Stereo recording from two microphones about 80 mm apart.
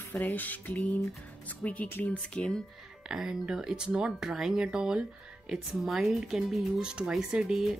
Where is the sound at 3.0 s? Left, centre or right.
Centre.